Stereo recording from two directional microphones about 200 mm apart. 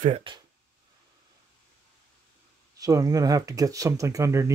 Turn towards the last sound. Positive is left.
turn(degrees=-15)  # may be behind; listen again after turning